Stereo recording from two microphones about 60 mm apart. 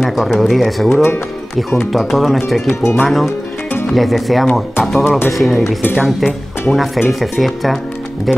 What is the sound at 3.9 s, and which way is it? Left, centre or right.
Speech, centre.